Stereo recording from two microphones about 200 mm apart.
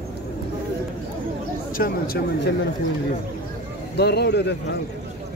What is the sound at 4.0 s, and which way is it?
Speech, 55° left (ahead or behind).